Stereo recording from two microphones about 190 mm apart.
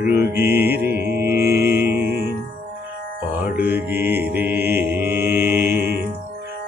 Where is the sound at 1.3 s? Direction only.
55° right (ahead or behind).